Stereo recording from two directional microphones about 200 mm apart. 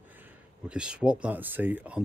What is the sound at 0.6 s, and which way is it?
Speech, 5° right (ahead or behind).